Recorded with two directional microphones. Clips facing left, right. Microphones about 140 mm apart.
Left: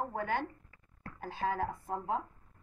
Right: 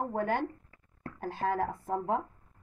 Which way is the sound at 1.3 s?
50° right (ahead or behind).